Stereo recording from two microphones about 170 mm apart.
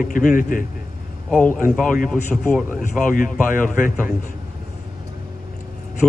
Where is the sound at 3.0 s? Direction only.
50° left (ahead or behind).